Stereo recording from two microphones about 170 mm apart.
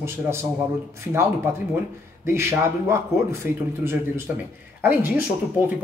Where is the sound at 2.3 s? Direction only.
15° right (ahead or behind).